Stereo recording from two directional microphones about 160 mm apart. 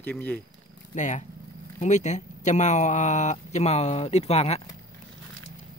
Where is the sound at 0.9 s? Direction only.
50° left (ahead or behind).